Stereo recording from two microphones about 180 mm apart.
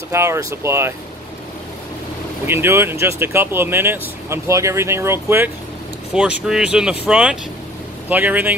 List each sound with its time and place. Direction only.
0.1 s speech: 15° right (ahead or behind)
2.4 s speech: 15° right (ahead or behind)